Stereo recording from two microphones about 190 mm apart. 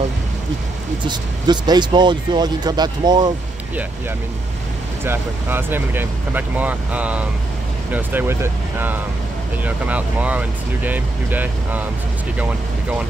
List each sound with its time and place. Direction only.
1.0 s speech: 25° right (ahead or behind)
5.0 s speech: 10° right (ahead or behind)